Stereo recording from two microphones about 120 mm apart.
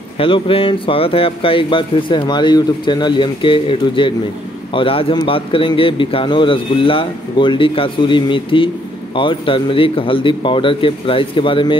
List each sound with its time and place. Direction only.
0.2 s speech: 50° left (ahead or behind)